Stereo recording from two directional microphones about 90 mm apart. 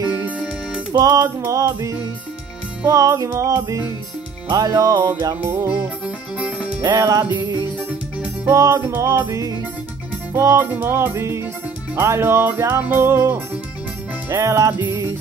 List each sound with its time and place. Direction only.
0.9 s music: 45° right (ahead or behind)
4.5 s music: 50° right (ahead or behind)
5.3 s music: 25° right (ahead or behind)
6.3 s music: 15° right (ahead or behind)
6.8 s music: 45° right (ahead or behind)
8.5 s music: 35° right (ahead or behind)